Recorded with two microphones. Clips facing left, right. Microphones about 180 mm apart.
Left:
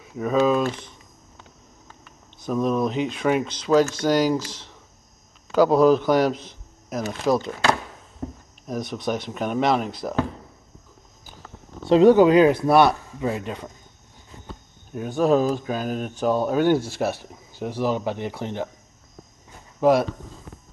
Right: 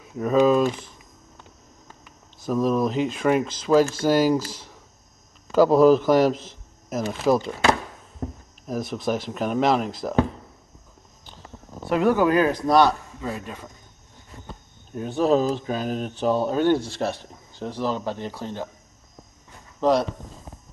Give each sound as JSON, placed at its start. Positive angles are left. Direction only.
{"t": 0.0, "sound": "speech", "side_deg": 0}
{"t": 2.0, "sound": "speech", "side_deg": 0}
{"t": 5.5, "sound": "a man's voice", "side_deg": 0}
{"t": 8.6, "sound": "speech", "side_deg": 0}
{"t": 11.9, "sound": "speech", "side_deg": 25}
{"t": 13.2, "sound": "speech", "side_deg": 20}
{"t": 15.0, "sound": "speech", "side_deg": 0}
{"t": 19.8, "sound": "speech", "side_deg": 5}